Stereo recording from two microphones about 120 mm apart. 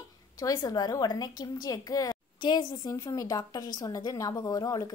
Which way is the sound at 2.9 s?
25° left (ahead or behind).